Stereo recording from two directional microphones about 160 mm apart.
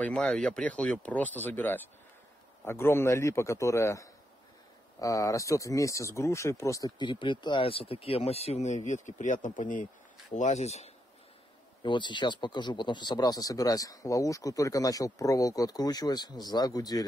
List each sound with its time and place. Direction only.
0.0 s speech: 5° left (ahead or behind); by 10.9 s 40° left (ahead or behind)
11.8 s speech: 30° left (ahead or behind)